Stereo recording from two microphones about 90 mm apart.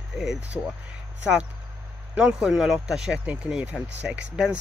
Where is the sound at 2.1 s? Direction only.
10° right (ahead or behind).